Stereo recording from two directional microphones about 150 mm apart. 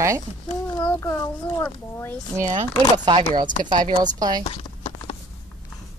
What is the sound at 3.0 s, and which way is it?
A woman's voice, 30° right (ahead or behind).